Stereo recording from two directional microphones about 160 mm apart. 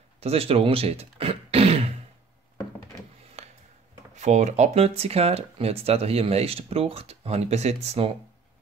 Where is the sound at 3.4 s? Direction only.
40° right (ahead or behind).